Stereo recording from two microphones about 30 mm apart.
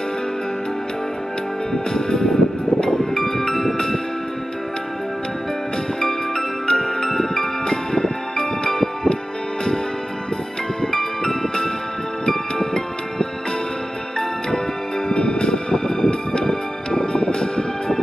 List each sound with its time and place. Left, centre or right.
1.7 s music: left
5.9 s music: centre
10.8 s music: centre
15.0 s music: left